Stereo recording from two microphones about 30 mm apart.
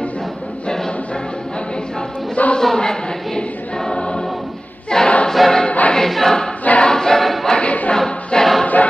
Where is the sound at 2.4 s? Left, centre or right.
Left.